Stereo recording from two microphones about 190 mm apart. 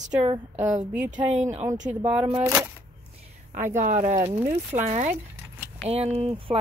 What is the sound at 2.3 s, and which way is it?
Speech, 15° right (ahead or behind).